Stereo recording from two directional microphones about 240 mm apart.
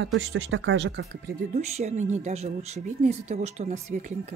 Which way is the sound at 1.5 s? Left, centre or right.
Right.